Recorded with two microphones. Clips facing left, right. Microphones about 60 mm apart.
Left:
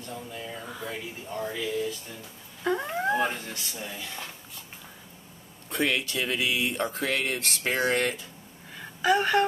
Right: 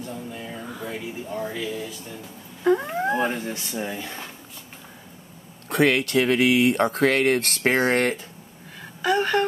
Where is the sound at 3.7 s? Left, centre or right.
Right.